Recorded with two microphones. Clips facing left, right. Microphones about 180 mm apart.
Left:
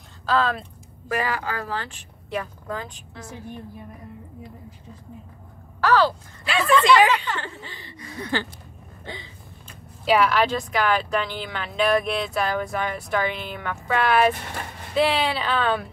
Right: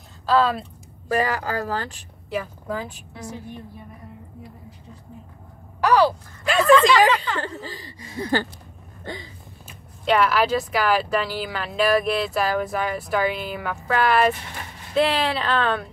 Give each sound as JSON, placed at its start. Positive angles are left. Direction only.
{"t": 0.3, "sound": "speech", "side_deg": 0}
{"t": 1.0, "sound": "a woman's voice", "side_deg": -40}
{"t": 2.2, "sound": "speech", "side_deg": -5}
{"t": 5.8, "sound": "speech", "side_deg": -15}
{"t": 6.4, "sound": "a woman's voice", "side_deg": -45}
{"t": 9.0, "sound": "a sound", "side_deg": -45}
{"t": 10.0, "sound": "speech", "side_deg": 0}